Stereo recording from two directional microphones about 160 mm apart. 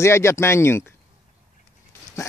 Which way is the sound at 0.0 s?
15° left (ahead or behind).